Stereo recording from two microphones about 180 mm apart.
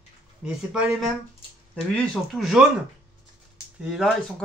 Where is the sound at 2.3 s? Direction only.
Centre (ahead or behind).